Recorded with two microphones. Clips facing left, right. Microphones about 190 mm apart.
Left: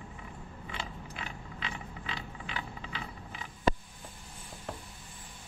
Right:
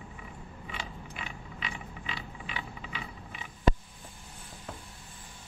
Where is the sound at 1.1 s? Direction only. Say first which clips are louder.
Even; 10° right (ahead or behind).